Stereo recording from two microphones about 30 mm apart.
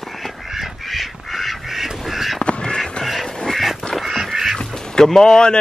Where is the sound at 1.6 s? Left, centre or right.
Centre.